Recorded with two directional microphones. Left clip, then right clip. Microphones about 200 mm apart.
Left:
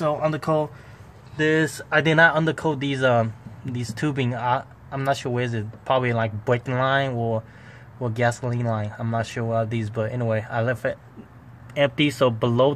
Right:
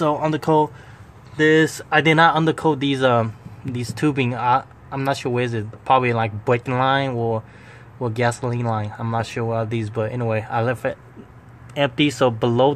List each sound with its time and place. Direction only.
0.0 s speech: 20° right (ahead or behind)
1.3 s speech: 5° right (ahead or behind)